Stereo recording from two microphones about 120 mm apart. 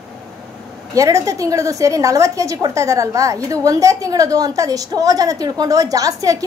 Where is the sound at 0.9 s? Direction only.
25° right (ahead or behind).